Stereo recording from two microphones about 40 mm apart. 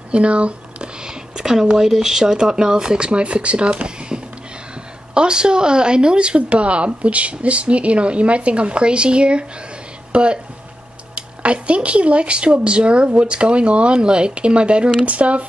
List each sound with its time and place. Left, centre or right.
0.1 s speech: right
1.0 s speech: centre; by 15.4 s right